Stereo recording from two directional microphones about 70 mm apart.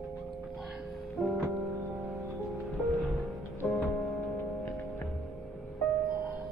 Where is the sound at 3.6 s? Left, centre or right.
Centre.